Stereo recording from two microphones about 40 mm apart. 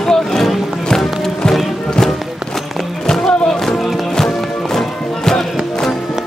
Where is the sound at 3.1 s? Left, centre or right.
Centre.